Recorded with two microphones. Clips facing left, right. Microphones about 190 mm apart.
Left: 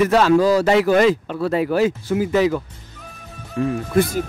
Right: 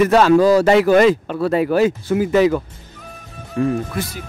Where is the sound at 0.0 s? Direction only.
50° right (ahead or behind).